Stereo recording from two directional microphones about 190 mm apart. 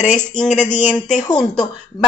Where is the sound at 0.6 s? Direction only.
40° left (ahead or behind).